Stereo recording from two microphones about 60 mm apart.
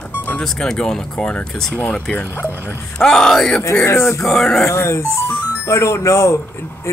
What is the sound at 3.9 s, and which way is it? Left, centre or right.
Speech, left.